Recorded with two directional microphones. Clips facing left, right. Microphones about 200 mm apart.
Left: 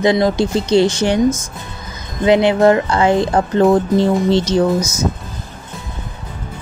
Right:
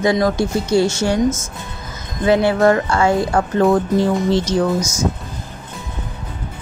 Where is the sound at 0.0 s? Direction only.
20° left (ahead or behind).